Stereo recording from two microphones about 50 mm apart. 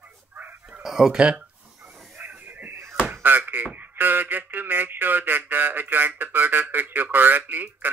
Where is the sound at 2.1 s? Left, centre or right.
Right.